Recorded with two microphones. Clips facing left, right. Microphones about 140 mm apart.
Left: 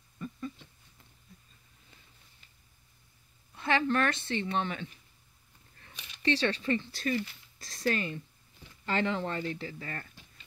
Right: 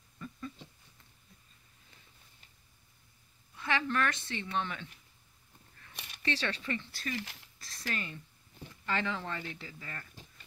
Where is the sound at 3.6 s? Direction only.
35° left (ahead or behind).